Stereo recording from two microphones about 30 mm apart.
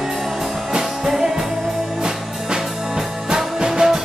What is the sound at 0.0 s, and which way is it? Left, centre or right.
Music, centre.